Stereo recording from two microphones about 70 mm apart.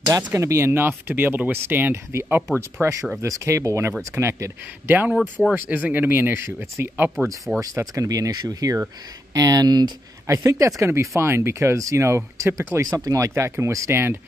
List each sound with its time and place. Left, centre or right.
0.3 s speech: right
2.8 s speech: right
5.1 s speech: centre
5.5 s speech: right
7.6 s speech: right
10.2 s speech: right
12.8 s speech: right
13.3 s speech: right